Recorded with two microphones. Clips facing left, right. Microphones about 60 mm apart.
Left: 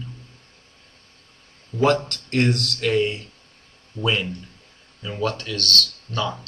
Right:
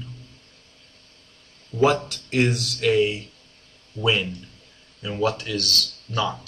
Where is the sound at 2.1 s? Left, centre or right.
Centre.